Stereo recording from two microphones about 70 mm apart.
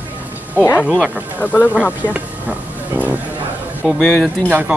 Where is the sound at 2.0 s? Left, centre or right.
Right.